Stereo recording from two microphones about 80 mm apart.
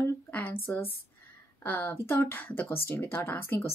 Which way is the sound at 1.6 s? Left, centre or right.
Left.